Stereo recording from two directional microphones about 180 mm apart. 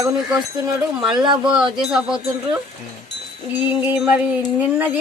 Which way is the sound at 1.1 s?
25° right (ahead or behind).